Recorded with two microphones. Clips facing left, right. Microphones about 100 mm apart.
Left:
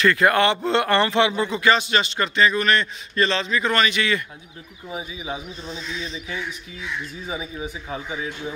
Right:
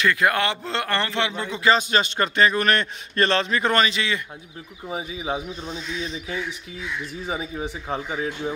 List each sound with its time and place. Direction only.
0.0 s a man's voice: 10° right (ahead or behind); by 1.6 s 15° left (ahead or behind)
1.6 s a man's voice: 35° right (ahead or behind); by 3.7 s 50° right (ahead or behind)
3.7 s speech: 30° right (ahead or behind)
5.8 s speech: 15° right (ahead or behind)
7.2 s speech: 40° right (ahead or behind)